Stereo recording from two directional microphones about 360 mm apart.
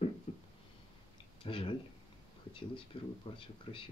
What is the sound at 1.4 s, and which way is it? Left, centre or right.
Speech, centre.